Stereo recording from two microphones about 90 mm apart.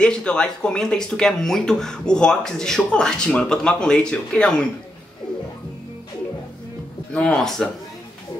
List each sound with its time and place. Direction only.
0.0 s speech: 10° left (ahead or behind)
7.3 s speech: 5° left (ahead or behind)